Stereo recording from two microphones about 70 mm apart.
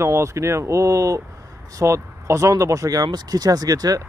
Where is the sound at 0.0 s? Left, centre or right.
Right.